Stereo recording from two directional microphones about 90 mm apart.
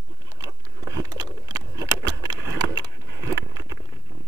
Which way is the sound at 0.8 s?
45° right (ahead or behind).